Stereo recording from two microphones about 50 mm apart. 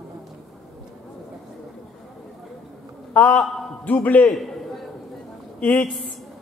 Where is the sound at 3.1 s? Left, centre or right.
Left.